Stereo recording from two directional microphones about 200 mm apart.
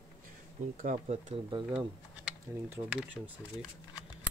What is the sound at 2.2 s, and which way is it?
Speech, 5° right (ahead or behind).